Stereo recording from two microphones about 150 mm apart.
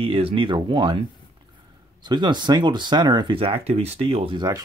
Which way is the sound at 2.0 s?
30° right (ahead or behind).